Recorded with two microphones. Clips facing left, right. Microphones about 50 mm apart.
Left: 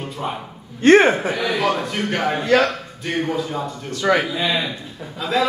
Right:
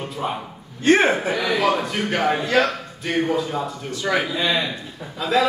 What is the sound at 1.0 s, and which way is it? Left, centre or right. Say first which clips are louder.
A man's voice: left 1 dB; centre.